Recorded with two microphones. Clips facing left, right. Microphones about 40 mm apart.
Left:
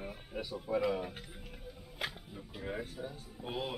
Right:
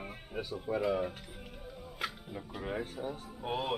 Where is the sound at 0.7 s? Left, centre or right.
Right.